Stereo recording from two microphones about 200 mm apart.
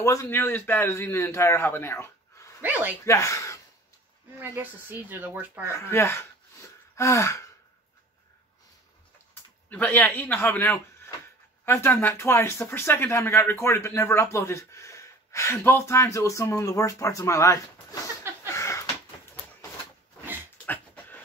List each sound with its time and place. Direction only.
0.0 s speech: 15° left (ahead or behind)
2.6 s speech: 10° right (ahead or behind)
3.1 s speech: 15° left (ahead or behind)
4.4 s speech: 10° right (ahead or behind)
5.7 s speech: 15° left (ahead or behind)
9.3 s speech: 10° left (ahead or behind)
18.5 s a sound: 15° left (ahead or behind)
20.6 s pant: 10° left (ahead or behind)